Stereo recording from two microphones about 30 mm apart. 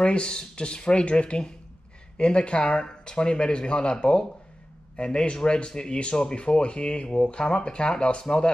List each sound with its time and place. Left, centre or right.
0.0 s speech: left